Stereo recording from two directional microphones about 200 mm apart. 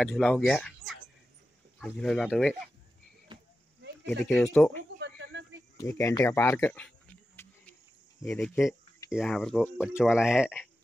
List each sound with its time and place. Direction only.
0.0 s speech: centre (ahead or behind)
3.3 s a sound: 20° right (ahead or behind)
4.3 s speech: 5° left (ahead or behind)
4.9 s a sound: 60° right (ahead or behind)
5.8 s speech: 15° left (ahead or behind)
8.3 s speech: centre (ahead or behind)